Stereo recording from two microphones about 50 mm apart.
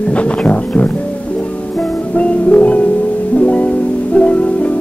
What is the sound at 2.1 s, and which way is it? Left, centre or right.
Music, left.